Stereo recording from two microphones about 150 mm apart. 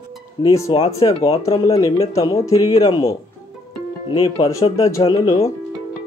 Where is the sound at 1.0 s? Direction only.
30° left (ahead or behind).